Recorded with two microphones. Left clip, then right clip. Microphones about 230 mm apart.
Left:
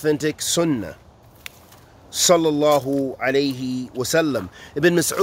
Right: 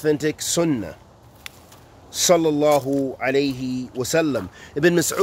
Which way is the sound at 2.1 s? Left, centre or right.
Centre.